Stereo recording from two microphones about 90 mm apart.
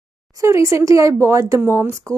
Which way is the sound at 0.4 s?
35° right (ahead or behind).